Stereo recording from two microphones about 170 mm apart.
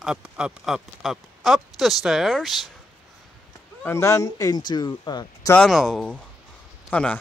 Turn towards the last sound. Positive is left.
turn(degrees=10)  # may be behind; listen again after turning